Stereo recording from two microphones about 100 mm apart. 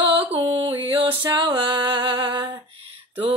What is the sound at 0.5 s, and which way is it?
Music, 55° right (ahead or behind).